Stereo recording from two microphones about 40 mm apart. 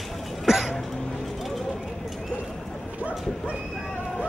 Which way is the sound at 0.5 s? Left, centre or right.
Centre.